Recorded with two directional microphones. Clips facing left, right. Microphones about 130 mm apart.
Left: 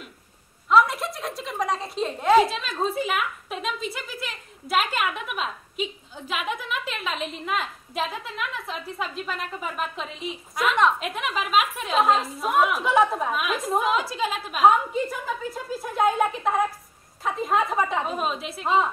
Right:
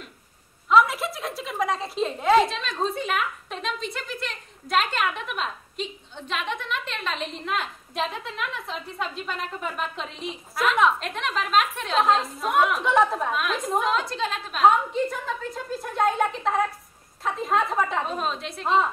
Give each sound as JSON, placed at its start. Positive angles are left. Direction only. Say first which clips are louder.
{"t": 0.7, "sound": "a woman's voice", "louder": "even", "side_deg": 0}